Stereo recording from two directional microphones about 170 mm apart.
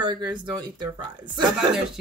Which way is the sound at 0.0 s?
25° right (ahead or behind).